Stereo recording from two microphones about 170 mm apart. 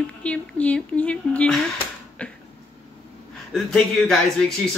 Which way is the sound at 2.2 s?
5° left (ahead or behind).